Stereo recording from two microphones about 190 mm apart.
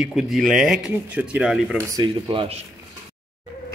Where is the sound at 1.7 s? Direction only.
15° right (ahead or behind).